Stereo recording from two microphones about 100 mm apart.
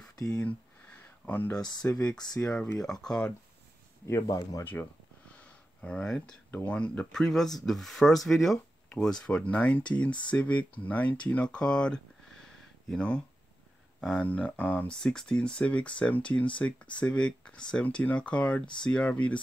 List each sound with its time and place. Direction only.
0.0 s a sound: 40° left (ahead or behind)
0.4 s a sound: 20° left (ahead or behind)
1.5 s speech: 45° left (ahead or behind)
2.8 s speech: 5° left (ahead or behind)
4.1 s speech: 40° left (ahead or behind)
5.8 s speech: 10° left (ahead or behind)
15.0 s speech: 5° left (ahead or behind)